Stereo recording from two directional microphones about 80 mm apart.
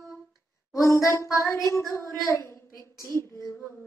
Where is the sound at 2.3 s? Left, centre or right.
Left.